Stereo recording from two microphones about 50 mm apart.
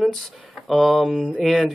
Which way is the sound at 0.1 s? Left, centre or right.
Centre.